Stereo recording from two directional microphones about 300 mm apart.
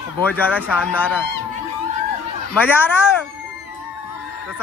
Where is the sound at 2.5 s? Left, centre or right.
Centre.